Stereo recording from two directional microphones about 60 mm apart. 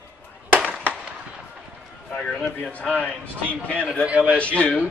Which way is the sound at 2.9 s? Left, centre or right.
Left.